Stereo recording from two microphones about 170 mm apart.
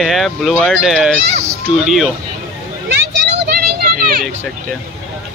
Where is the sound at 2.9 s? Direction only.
80° right.